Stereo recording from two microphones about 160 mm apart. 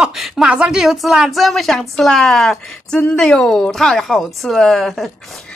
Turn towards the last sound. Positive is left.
turn(degrees=0)  # may be behind; listen again after turning